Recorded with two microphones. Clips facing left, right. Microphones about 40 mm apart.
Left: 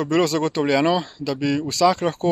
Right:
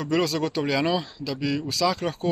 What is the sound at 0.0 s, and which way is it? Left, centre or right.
Speech, left.